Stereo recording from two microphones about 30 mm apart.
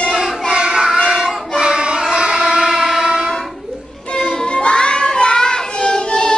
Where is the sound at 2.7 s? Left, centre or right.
Centre.